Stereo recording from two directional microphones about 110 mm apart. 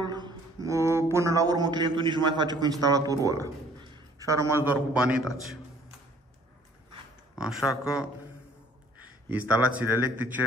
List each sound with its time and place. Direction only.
0.0 s a sound: 40° right (ahead or behind)
0.7 s a man's voice: 25° right (ahead or behind)
7.3 s speech: 5° right (ahead or behind)
9.3 s speech: 15° right (ahead or behind)